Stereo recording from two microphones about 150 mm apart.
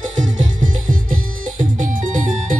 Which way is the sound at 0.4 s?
65° right (ahead or behind).